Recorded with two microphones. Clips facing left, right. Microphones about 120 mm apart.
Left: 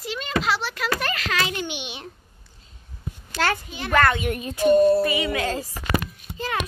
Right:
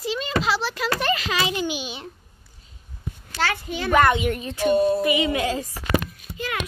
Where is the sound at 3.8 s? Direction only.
15° right (ahead or behind).